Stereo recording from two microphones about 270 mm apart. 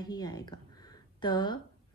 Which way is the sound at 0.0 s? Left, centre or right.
Centre.